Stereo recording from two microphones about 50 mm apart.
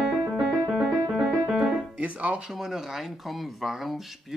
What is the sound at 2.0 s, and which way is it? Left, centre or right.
Music, right.